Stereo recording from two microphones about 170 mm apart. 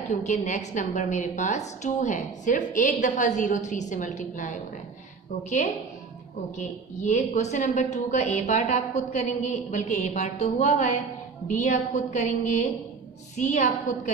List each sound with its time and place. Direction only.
0.3 s a woman's voice: 45° left (ahead or behind)
6.6 s a woman's voice: 45° left (ahead or behind)